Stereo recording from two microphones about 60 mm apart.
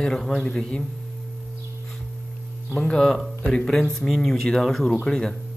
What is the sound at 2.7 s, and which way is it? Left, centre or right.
Speech, centre.